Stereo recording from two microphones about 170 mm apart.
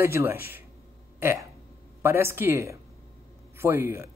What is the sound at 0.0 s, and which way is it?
Speech, 15° right (ahead or behind).